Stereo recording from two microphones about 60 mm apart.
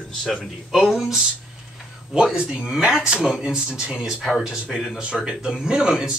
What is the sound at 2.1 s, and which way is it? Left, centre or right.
Speech, centre.